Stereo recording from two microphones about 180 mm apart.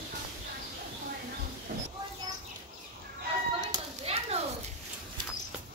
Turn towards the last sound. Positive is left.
turn(degrees=-35)  # may be behind; listen again after turning